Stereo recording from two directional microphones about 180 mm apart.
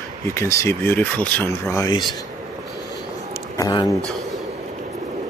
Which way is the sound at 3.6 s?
20° left (ahead or behind).